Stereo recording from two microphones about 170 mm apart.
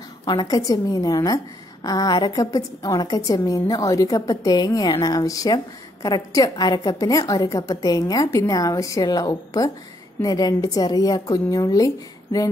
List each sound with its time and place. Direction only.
0.2 s a woman's voice: 25° left (ahead or behind)